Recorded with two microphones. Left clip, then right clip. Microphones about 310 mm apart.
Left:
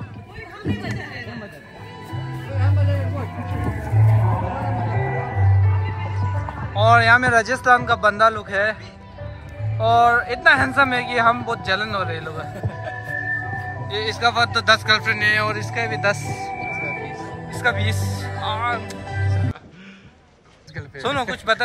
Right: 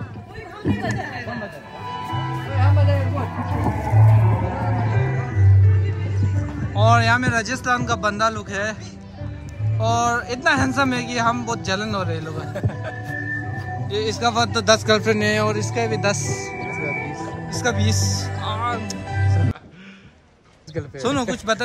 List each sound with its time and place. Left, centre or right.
0.7 s speech: right
2.0 s music: centre
3.8 s a sound: centre
4.3 s music: centre
6.8 s speech: centre
9.8 s a man's voice: centre
20.7 s a man's voice: centre